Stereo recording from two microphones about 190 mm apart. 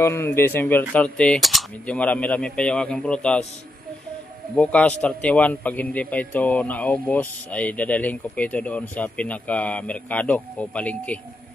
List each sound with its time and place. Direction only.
0.0 s a man's voice: 10° left (ahead or behind)
4.6 s a man's voice: 5° left (ahead or behind)